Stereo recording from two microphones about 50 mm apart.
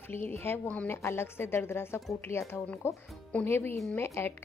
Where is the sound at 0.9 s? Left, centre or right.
Left.